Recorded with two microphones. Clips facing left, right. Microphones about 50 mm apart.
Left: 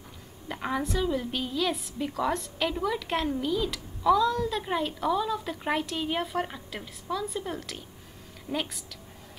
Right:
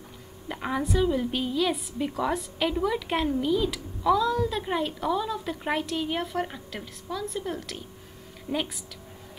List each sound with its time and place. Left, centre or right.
0.5 s a woman's voice: centre